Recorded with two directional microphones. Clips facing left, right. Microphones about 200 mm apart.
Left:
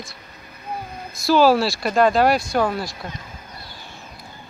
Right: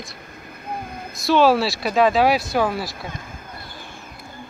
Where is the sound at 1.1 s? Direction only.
Centre (ahead or behind).